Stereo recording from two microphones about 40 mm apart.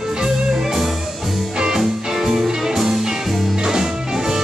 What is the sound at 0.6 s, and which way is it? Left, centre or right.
Music, centre.